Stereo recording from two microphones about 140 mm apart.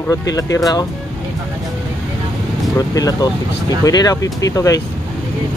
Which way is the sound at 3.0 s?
25° left (ahead or behind).